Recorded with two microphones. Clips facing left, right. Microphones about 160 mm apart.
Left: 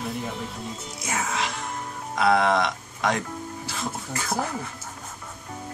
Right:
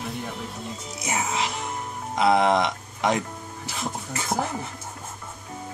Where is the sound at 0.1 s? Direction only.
Centre (ahead or behind).